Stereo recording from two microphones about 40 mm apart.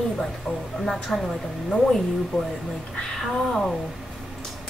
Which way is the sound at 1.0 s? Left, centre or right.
Centre.